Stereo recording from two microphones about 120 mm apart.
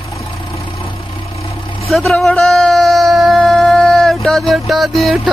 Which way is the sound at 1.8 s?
Centre (ahead or behind).